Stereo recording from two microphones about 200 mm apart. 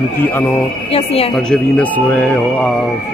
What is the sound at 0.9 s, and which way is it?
Speech, 30° left (ahead or behind).